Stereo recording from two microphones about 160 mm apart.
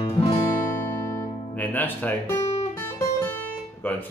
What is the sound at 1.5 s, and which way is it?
Music, 10° left (ahead or behind).